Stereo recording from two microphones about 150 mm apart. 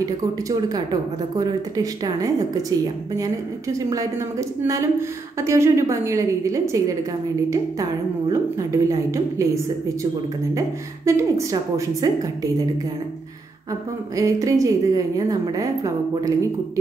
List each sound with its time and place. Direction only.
0.0 s a woman's voice: 25° right (ahead or behind)
8.3 s a woman's voice: 20° right (ahead or behind)
11.1 s a woman's voice: 20° right (ahead or behind)
14.1 s a woman's voice: 20° right (ahead or behind)